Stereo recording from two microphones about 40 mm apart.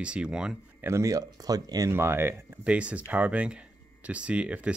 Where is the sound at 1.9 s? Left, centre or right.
Right.